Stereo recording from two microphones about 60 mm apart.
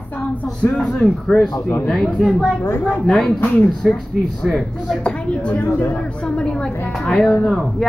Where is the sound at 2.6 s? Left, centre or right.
Left.